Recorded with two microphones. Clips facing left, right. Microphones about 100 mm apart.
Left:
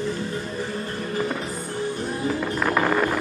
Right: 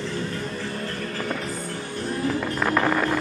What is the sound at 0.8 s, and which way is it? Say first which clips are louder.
Music: left 3 dB; 15° left (ahead or behind).